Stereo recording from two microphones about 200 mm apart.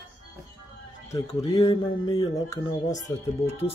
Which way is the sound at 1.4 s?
15° left (ahead or behind).